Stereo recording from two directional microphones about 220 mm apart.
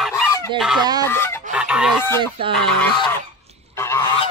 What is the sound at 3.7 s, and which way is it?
Goose, 10° left (ahead or behind).